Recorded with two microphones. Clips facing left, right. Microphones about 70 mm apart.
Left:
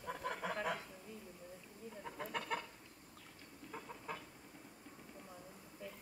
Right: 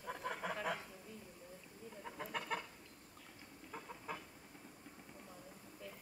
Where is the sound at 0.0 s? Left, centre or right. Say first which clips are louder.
Left 1 dB; centre.